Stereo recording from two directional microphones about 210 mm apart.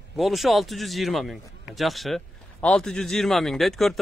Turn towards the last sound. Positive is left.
turn(degrees=0)  # may be behind; listen again after turning